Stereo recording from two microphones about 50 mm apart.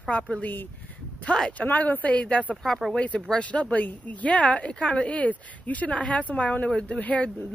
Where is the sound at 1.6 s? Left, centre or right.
Left.